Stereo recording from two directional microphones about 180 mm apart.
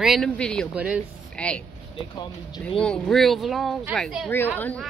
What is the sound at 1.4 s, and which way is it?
Speech, 5° left (ahead or behind).